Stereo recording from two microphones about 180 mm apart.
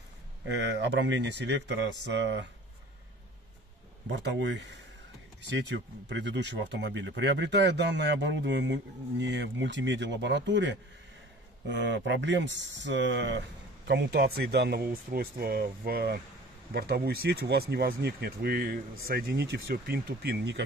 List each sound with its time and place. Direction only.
0.5 s speech: 75° right (ahead or behind)
4.1 s speech: 75° right (ahead or behind)
13.8 s speech: 70° right (ahead or behind)